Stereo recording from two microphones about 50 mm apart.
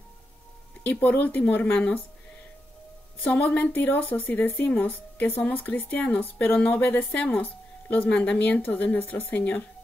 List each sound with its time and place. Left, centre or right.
0.8 s speech: left
1.7 s a woman's voice: left
3.3 s speech: left
7.2 s a woman's voice: left